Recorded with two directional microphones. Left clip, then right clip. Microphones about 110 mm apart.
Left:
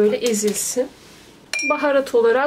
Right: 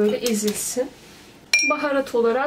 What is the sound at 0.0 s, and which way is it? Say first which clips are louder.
Speech: left 3 dB; 40° left (ahead or behind).